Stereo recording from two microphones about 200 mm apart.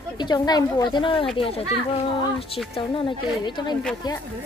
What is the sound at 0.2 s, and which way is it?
Speech, 20° left (ahead or behind).